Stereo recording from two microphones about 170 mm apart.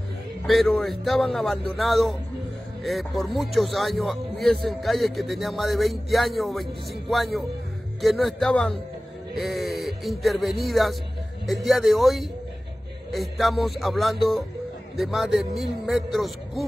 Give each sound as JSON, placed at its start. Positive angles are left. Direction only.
{"t": 0.5, "sound": "speech", "side_deg": 0}